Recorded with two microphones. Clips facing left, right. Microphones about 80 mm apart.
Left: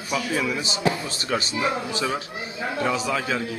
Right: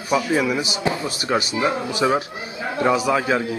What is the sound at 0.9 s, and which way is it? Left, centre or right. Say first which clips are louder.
A man's voice: right 4 dB; right.